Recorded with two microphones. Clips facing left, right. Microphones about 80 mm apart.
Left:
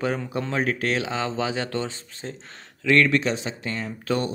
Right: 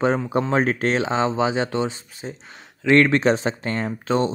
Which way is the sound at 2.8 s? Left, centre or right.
Right.